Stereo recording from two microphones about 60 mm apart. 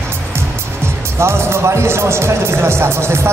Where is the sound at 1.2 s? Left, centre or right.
Right.